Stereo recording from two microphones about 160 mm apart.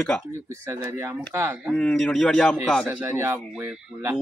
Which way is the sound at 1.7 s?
5° left (ahead or behind).